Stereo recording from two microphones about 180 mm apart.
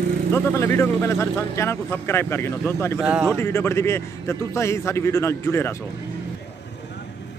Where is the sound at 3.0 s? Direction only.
5° right (ahead or behind).